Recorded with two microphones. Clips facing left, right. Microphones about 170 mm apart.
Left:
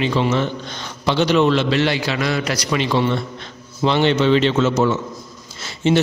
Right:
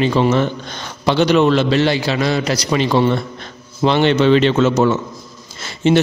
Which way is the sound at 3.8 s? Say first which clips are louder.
Right 3 dB; 60° right (ahead or behind).